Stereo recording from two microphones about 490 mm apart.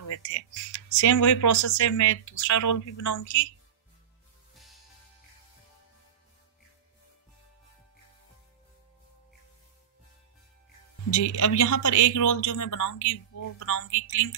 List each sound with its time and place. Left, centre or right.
0.0 s speech: left
11.3 s speech: left